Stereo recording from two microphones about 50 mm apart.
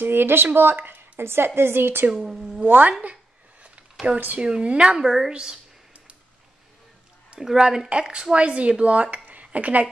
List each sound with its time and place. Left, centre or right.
0.0 s a woman's voice: right
2.1 s speech: centre
2.6 s speech: right
4.4 s speech: centre
5.0 s a woman's voice: centre
7.3 s speech: centre; by 9.8 s right